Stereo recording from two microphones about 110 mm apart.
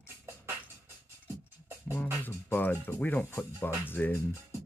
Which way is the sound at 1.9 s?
20° left (ahead or behind).